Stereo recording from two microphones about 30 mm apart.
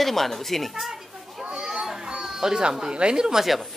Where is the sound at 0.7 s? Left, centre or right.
Centre.